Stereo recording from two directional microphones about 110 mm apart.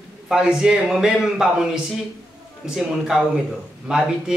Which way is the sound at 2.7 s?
5° right (ahead or behind).